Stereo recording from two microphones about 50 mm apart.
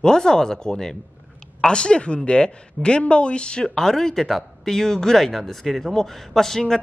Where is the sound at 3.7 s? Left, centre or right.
Centre.